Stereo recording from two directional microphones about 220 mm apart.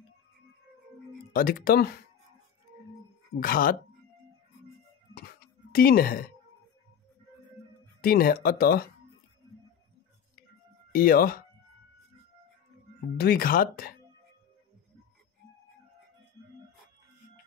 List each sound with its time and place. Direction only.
1.3 s speech: 40° left (ahead or behind)
3.3 s speech: 40° left (ahead or behind)
5.7 s speech: 40° left (ahead or behind)
8.0 s speech: 40° left (ahead or behind)
10.9 s speech: 40° left (ahead or behind)
13.2 s speech: 45° left (ahead or behind)